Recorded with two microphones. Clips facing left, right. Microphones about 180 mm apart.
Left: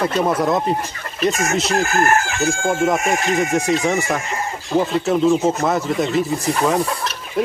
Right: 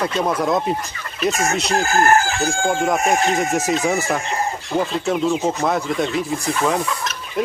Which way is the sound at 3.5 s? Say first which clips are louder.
Left 1 dB; 5° right (ahead or behind).